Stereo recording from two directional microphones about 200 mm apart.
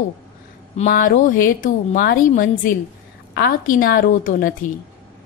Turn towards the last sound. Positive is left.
turn(degrees=45)  # may be behind; listen again after turning